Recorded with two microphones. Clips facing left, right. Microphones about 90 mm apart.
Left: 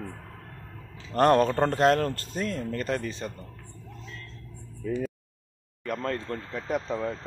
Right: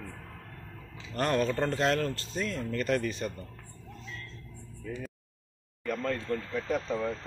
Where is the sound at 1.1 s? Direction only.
50° left (ahead or behind); by 3.4 s 30° left (ahead or behind).